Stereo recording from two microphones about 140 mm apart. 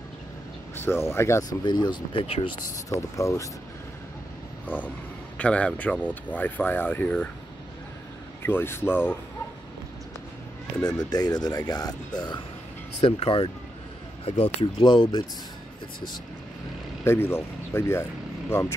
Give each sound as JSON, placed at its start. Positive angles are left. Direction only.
{"t": 0.7, "sound": "speech", "side_deg": 20}
{"t": 1.6, "sound": "speech", "side_deg": 35}
{"t": 2.6, "sound": "speech", "side_deg": 25}
{"t": 4.6, "sound": "speech", "side_deg": 10}
{"t": 8.4, "sound": "speech", "side_deg": 15}
{"t": 10.8, "sound": "speech", "side_deg": 30}
{"t": 13.0, "sound": "speech", "side_deg": 45}
{"t": 17.0, "sound": "speech", "side_deg": 15}